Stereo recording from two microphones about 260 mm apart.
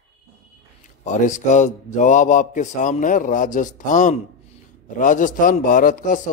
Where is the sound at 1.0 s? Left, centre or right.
Left.